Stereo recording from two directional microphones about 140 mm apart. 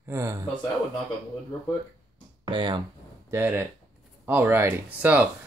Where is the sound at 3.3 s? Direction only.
15° right (ahead or behind).